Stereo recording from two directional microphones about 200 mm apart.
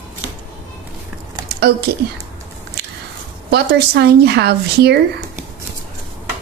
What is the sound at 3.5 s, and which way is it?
A woman's voice, 55° right (ahead or behind).